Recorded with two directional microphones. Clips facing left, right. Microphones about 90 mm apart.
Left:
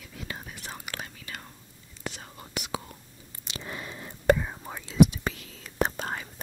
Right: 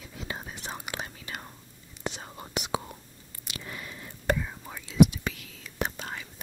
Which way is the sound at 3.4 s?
30° left (ahead or behind).